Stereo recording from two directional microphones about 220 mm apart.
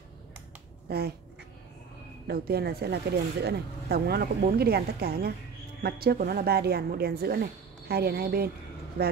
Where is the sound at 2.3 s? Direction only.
45° right (ahead or behind).